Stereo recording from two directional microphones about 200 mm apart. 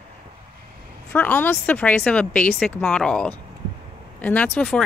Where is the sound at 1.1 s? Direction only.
10° left (ahead or behind).